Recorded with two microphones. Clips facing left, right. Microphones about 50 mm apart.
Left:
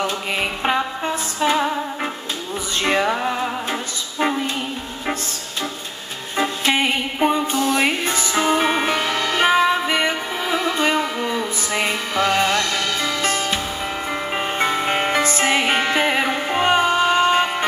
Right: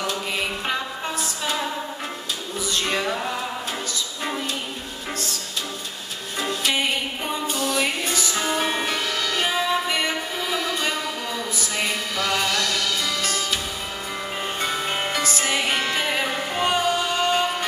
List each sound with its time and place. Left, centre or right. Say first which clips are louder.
0.0 s music: left 4 dB; left
2.8 s music: left 7 dB; left
6.3 s music: left 5 dB; left